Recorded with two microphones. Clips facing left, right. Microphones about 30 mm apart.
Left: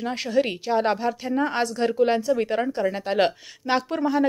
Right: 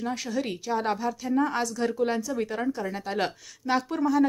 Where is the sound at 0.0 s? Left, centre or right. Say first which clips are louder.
Left 6 dB; left.